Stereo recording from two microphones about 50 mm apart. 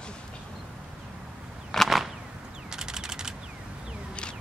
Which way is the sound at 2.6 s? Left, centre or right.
Centre.